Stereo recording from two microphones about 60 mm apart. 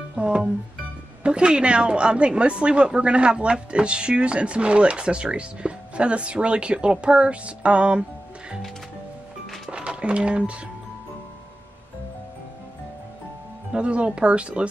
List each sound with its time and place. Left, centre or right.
0.1 s music: centre
1.2 s a woman's voice: centre
9.7 s a sound: centre
13.7 s speech: centre